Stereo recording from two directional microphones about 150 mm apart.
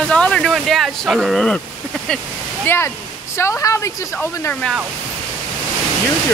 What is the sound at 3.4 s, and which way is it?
Speech, 20° left (ahead or behind).